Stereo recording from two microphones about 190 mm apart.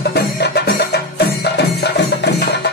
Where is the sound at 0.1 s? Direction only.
60° left (ahead or behind).